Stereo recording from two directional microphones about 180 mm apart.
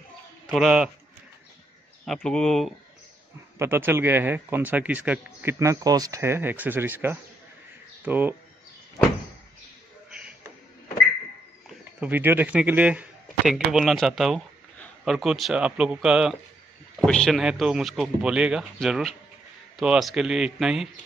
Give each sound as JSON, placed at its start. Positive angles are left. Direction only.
{"t": 0.5, "sound": "speech", "side_deg": -5}
{"t": 2.0, "sound": "speech", "side_deg": 5}
{"t": 3.5, "sound": "speech", "side_deg": -15}
{"t": 12.0, "sound": "speech", "side_deg": -10}